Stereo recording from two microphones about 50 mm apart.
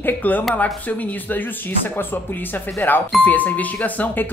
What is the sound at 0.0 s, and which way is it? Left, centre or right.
Speech, left.